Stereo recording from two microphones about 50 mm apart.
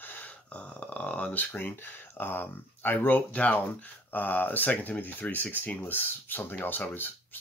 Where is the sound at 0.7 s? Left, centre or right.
Left.